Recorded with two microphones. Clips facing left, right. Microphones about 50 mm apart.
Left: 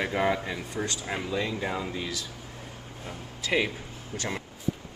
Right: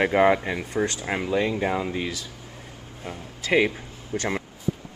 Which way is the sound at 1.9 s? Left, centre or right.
Right.